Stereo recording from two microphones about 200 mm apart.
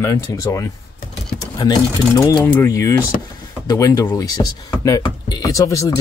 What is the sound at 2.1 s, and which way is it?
Speech, 15° left (ahead or behind).